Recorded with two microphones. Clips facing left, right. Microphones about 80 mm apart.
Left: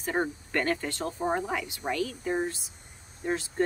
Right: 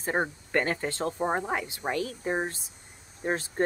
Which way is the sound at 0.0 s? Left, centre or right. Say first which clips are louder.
Right 1 dB; right.